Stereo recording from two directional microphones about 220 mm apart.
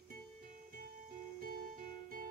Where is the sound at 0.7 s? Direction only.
40° right (ahead or behind).